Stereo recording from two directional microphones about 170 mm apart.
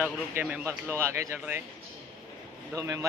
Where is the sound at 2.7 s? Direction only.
20° right (ahead or behind).